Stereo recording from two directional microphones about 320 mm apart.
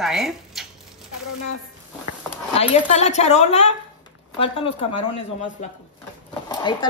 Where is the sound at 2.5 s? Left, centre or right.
Centre.